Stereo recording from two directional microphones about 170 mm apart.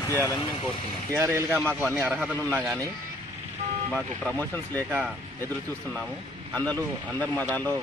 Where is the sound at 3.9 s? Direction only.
5° left (ahead or behind).